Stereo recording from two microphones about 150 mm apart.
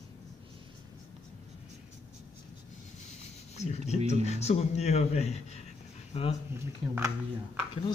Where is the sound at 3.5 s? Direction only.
50° left (ahead or behind).